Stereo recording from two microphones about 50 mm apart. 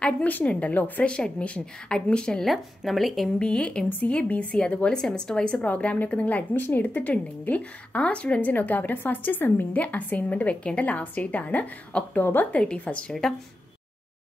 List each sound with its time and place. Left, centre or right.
0.5 s a woman's voice: left
1.0 s a woman's voice: left
2.4 s speech: centre
3.3 s a woman's voice: left
7.0 s a woman's voice: left
13.2 s speech: centre